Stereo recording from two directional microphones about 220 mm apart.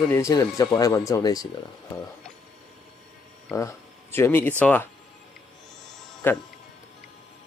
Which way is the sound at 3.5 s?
15° left (ahead or behind).